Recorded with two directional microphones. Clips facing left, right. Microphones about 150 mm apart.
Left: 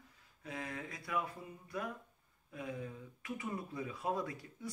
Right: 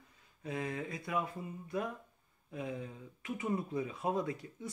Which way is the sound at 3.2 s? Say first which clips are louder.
Right 6 dB; 20° right (ahead or behind).